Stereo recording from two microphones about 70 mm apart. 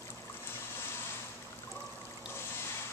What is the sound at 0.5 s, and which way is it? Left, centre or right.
Water, left.